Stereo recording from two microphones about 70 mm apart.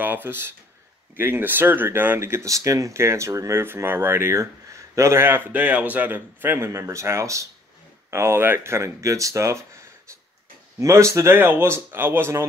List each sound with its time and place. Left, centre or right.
0.0 s speech: right
10.8 s speech: right
11.3 s speech: right